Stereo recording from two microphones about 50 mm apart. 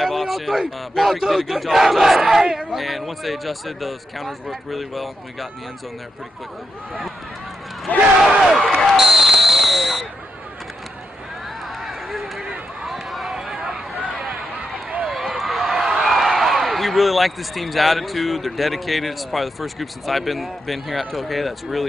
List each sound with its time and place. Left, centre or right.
0.0 s a man's voice: centre
7.9 s speech: left
8.4 s basketball bounce: centre
11.6 s run: centre
13.3 s a sound: centre
15.0 s speech: centre